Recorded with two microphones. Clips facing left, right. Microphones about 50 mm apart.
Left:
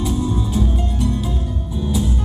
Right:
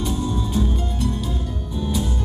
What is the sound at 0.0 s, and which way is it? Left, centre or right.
Music, centre.